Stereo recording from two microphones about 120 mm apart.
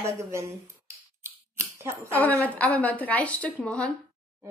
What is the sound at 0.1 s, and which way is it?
Speech, 25° right (ahead or behind).